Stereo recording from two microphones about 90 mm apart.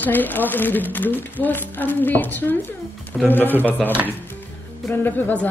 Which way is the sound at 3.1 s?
5° right (ahead or behind).